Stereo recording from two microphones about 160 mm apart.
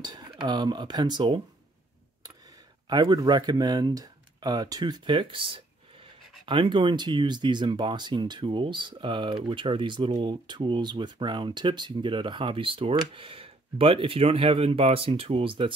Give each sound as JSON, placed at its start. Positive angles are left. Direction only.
{"t": 0.0, "sound": "speech", "side_deg": -25}
{"t": 2.9, "sound": "speech", "side_deg": -25}